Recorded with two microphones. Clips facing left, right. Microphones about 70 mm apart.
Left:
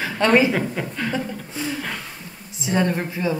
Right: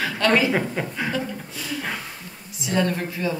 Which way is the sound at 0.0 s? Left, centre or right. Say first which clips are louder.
Left 3 dB; left.